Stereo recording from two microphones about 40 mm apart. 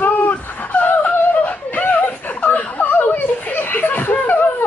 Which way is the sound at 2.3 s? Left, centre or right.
Left.